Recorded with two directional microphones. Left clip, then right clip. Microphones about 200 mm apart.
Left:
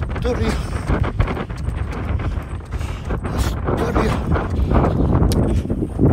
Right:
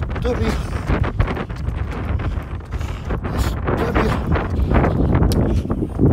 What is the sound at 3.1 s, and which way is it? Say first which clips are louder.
Wind noise: even; 5° right (ahead or behind).